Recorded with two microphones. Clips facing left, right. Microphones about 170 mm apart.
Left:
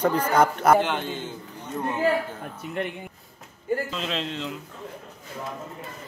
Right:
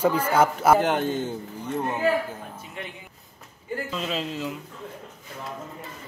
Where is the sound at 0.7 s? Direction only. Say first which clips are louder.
Right 2 dB; 45° right (ahead or behind).